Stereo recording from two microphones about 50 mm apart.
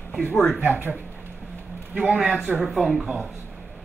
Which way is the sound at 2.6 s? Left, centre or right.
Centre.